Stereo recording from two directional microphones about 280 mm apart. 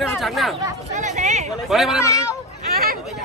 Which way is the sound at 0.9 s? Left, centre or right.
Right.